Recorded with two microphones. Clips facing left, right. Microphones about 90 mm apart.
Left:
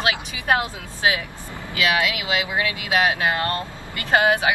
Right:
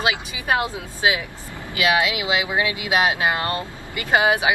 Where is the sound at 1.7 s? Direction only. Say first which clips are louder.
Right 2 dB; 20° right (ahead or behind).